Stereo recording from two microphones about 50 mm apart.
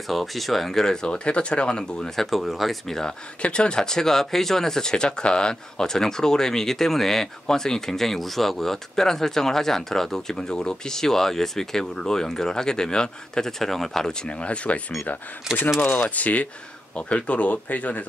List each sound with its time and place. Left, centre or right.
0.1 s speech: centre
2.1 s speech: centre
3.4 s speech: centre
14.4 s speech: left
16.2 s speech: left